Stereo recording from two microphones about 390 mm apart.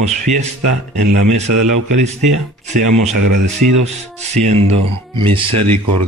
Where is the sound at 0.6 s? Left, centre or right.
Right.